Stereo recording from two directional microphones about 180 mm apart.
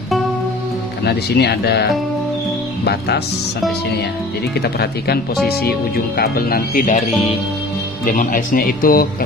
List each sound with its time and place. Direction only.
1.0 s speech: 65° left (ahead or behind)
4.6 s speech: 60° left (ahead or behind)
8.0 s speech: 50° left (ahead or behind)